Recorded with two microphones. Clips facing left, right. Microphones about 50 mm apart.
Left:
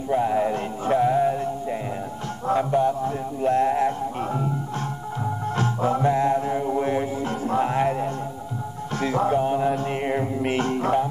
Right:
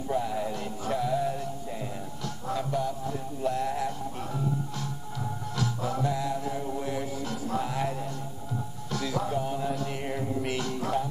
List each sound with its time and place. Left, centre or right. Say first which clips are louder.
0.1 s music: left 9 dB; left
2.4 s a sound: left 10 dB; left
5.2 s music: left 7 dB; left